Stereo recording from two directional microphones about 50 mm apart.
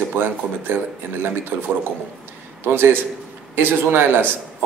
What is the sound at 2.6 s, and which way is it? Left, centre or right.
Speech, right.